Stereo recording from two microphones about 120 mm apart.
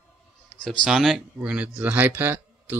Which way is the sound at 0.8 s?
Centre (ahead or behind).